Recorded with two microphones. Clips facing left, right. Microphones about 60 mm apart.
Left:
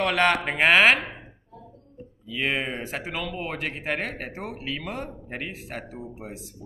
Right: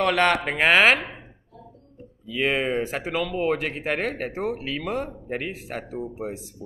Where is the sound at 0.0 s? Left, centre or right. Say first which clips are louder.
Right 1 dB; centre.